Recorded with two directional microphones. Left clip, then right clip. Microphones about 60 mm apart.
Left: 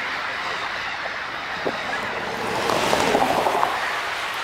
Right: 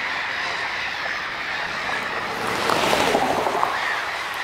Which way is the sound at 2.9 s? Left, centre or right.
Right.